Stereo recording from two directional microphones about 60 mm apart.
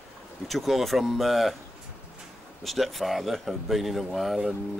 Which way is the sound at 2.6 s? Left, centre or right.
Centre.